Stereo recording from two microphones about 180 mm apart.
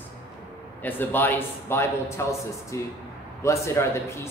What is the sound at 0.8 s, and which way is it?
Speech, 10° left (ahead or behind).